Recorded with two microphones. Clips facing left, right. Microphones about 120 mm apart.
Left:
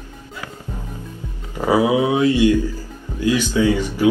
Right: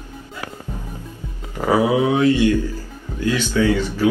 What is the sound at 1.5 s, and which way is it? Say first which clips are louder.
Speech: left 1 dB; 10° left (ahead or behind).